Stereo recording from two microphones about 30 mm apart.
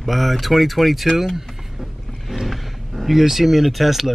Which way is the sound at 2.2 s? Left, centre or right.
Centre.